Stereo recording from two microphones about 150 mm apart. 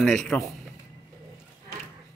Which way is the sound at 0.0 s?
Centre (ahead or behind).